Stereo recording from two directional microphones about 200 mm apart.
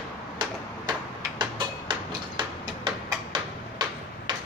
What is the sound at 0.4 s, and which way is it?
Tick-tock, 25° right (ahead or behind).